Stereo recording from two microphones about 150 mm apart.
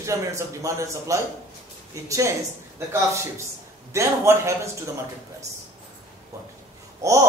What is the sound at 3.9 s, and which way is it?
Speech, 20° right (ahead or behind).